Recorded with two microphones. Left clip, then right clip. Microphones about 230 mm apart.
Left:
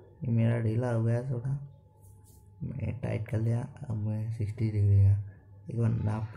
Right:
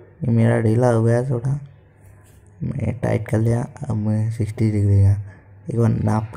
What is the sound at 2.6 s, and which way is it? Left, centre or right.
Speech, centre.